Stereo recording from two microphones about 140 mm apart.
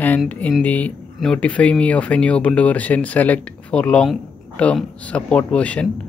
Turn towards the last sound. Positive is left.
turn(degrees=10)  # may be behind; listen again after turning